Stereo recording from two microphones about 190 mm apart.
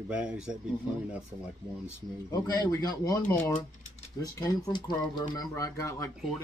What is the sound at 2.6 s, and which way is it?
Speech, 20° left (ahead or behind).